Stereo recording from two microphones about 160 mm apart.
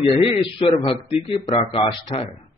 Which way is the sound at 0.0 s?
35° left (ahead or behind).